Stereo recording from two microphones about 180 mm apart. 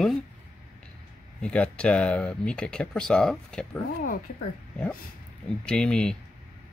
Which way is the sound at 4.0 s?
50° left (ahead or behind).